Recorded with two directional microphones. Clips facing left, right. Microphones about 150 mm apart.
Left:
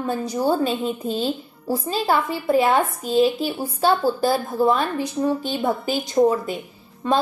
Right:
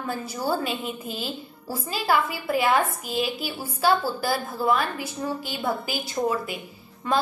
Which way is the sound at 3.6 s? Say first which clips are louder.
Left 3 dB; 25° left (ahead or behind).